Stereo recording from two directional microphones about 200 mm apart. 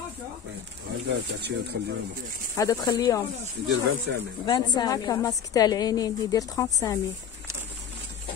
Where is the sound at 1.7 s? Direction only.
55° right (ahead or behind).